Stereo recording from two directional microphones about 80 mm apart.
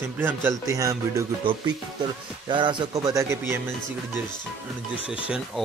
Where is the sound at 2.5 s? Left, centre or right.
Right.